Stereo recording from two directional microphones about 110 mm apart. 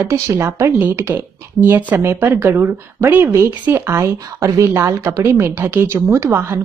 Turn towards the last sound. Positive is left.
turn(degrees=-25)  # may be behind; listen again after turning